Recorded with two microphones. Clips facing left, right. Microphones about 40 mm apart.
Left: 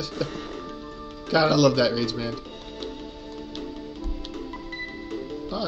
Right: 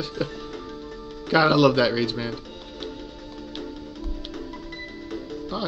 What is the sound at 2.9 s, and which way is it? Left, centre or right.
Music, left.